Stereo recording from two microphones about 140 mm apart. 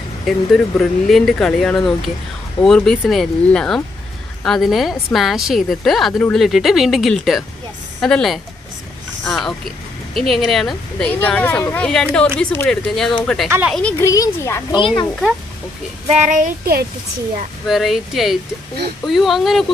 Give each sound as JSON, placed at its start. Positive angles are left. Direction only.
{"t": 0.2, "sound": "speech", "side_deg": 0}
{"t": 13.9, "sound": "a woman's voice", "side_deg": 25}
{"t": 16.1, "sound": "speech", "side_deg": -55}
{"t": 17.6, "sound": "speech", "side_deg": 0}